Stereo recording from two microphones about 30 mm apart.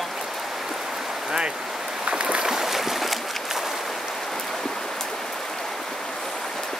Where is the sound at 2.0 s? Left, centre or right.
Right.